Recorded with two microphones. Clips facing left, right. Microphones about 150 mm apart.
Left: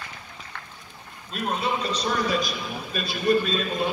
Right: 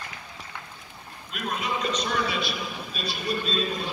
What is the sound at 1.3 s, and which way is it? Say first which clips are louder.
A man's voice: left 3 dB; 30° left (ahead or behind).